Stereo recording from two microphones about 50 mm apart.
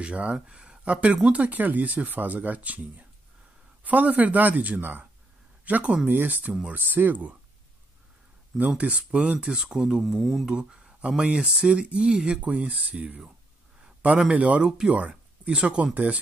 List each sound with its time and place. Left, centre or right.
0.0 s speech: right
5.7 s speech: right
8.5 s speech: right
14.3 s speech: right
14.6 s speech: centre
15.0 s a sound: right
15.5 s speech: centre